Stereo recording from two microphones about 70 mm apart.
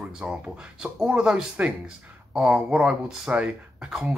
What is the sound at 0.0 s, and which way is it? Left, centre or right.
Speech, centre.